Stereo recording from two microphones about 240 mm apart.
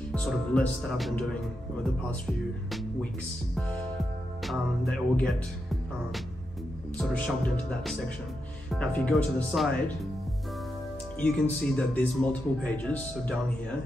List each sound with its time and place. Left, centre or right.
0.1 s speech: centre
2.7 s music: centre
3.5 s speech: centre
4.9 s speech: centre
7.0 s speech: centre
11.1 s speech: centre